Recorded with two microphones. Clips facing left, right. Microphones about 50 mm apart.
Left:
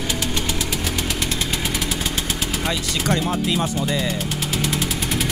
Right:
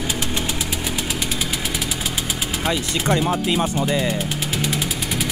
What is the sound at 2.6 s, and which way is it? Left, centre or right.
Speech, right.